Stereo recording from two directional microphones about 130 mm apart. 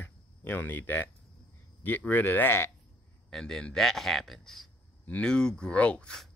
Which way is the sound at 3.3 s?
5° left (ahead or behind).